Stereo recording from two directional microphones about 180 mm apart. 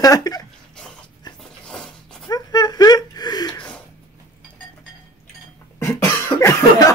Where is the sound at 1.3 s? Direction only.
25° left (ahead or behind).